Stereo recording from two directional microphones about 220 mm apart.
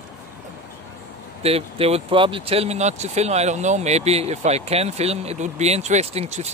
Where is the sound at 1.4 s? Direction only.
25° right (ahead or behind).